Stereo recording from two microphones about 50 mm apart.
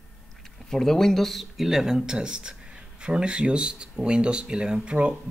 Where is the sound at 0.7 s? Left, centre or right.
Centre.